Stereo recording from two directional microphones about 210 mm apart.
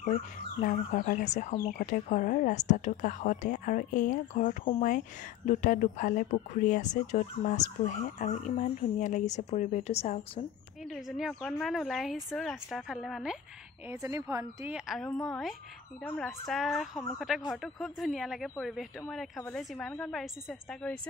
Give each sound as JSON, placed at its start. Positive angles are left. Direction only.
{"t": 0.6, "sound": "speech", "side_deg": 40}
{"t": 10.9, "sound": "speech", "side_deg": 0}
{"t": 13.8, "sound": "speech", "side_deg": -15}